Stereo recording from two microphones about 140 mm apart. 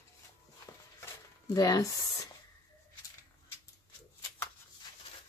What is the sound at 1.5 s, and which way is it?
Speech, 25° left (ahead or behind).